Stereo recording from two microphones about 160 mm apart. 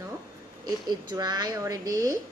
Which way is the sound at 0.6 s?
25° right (ahead or behind).